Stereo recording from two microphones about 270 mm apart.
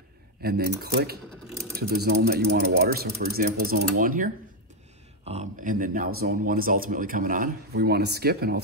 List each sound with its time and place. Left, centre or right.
0.4 s speech: right
5.3 s speech: right